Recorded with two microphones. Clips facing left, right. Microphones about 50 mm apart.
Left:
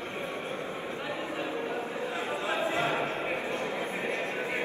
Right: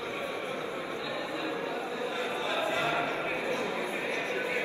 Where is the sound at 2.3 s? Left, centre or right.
Left.